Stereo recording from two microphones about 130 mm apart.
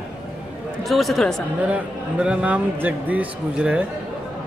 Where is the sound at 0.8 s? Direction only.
Centre (ahead or behind).